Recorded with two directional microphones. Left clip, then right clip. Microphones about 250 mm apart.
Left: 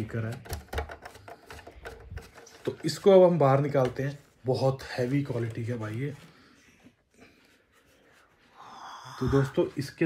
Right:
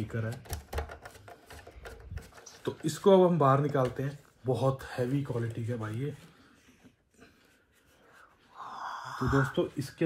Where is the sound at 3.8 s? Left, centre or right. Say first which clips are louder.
Left 3 dB; centre.